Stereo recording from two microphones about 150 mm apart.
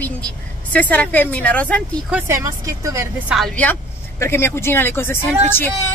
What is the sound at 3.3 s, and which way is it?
A woman's voice, 5° left (ahead or behind).